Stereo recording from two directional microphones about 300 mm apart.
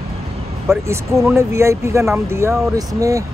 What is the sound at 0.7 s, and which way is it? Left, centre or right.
Speech, centre.